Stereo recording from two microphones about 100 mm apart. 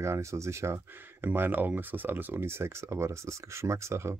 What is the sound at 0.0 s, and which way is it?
Speech, 30° right (ahead or behind).